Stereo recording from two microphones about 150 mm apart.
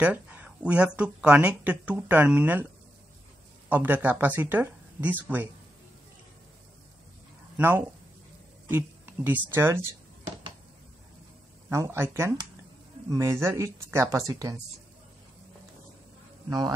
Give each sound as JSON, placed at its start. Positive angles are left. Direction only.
{"t": 0.0, "sound": "speech", "side_deg": -10}
{"t": 3.6, "sound": "speech", "side_deg": -10}
{"t": 7.5, "sound": "speech", "side_deg": -15}
{"t": 11.7, "sound": "speech", "side_deg": -15}
{"t": 16.4, "sound": "a man's voice", "side_deg": -25}